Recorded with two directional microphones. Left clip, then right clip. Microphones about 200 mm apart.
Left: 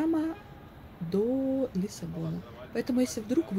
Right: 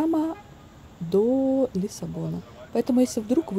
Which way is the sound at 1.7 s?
20° right (ahead or behind).